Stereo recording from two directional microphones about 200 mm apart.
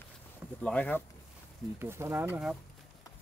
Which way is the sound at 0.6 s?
5° left (ahead or behind).